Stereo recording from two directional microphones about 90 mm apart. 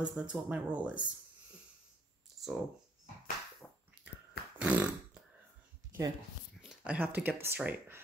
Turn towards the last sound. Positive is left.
turn(degrees=-25)  # may be behind; listen again after turning